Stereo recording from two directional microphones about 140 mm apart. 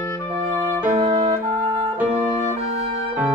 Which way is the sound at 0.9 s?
45° right (ahead or behind).